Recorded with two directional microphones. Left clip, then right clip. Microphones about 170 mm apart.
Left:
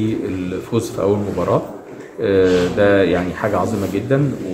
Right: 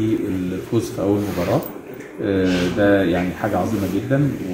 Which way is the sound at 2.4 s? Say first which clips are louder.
Left 4 dB; 20° left (ahead or behind).